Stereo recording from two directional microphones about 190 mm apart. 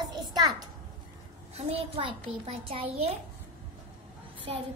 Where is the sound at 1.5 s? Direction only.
35° right (ahead or behind).